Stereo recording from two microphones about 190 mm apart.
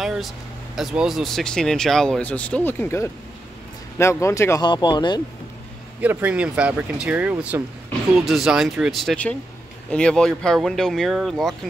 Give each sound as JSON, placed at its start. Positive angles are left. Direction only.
{"t": 0.0, "sound": "speech", "side_deg": 0}
{"t": 5.9, "sound": "speech", "side_deg": -10}